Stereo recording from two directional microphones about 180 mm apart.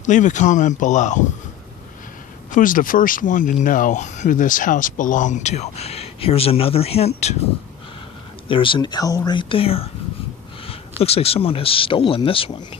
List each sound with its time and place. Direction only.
0.0 s speech: 45° left (ahead or behind)
2.5 s speech: 50° left (ahead or behind)
8.5 s speech: 30° left (ahead or behind)